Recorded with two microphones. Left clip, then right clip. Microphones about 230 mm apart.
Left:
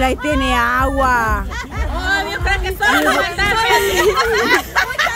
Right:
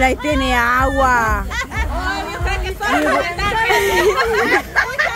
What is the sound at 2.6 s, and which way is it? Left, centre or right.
Speech, left.